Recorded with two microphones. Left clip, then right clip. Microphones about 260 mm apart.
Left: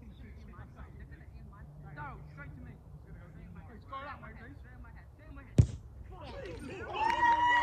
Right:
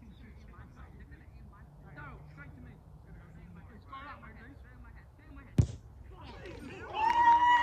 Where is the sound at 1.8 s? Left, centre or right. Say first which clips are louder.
Left 4 dB; centre.